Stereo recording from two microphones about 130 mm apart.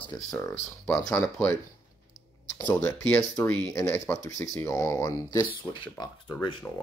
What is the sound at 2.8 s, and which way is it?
Speech, 20° left (ahead or behind).